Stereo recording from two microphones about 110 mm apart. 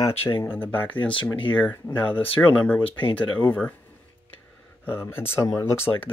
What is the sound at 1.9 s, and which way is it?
Speech, 50° left (ahead or behind).